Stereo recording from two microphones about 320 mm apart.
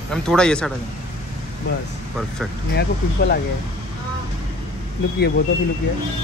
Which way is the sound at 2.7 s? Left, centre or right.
Left.